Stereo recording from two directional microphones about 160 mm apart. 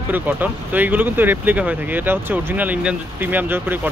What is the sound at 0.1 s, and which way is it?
Speech, 10° right (ahead or behind).